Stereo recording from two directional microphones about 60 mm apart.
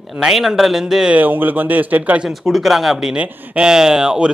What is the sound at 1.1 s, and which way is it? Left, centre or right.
Speech, right.